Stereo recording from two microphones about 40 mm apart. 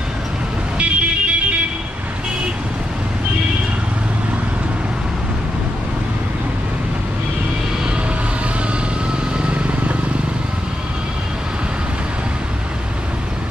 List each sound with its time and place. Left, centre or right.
0.7 s music: right
9.4 s purr: right